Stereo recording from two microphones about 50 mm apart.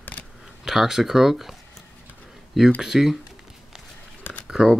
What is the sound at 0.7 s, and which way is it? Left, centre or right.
Speech, centre.